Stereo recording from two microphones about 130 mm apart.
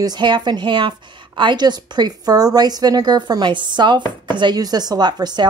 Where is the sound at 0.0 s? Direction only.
35° right (ahead or behind).